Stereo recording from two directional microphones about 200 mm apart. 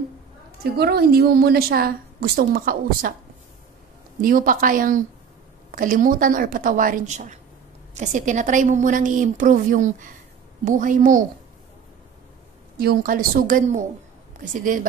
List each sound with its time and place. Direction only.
0.7 s a woman's voice: 50° right (ahead or behind)
4.2 s a woman's voice: 45° right (ahead or behind)
12.7 s a woman's voice: 45° right (ahead or behind)